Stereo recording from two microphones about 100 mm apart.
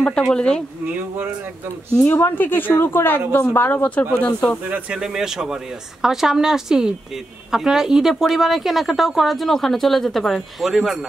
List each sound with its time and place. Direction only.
0.0 s speech: 10° left (ahead or behind)
0.9 s speech: 20° right (ahead or behind)
2.1 s speech: 20° left (ahead or behind)
4.6 s a woman's voice: 15° right (ahead or behind)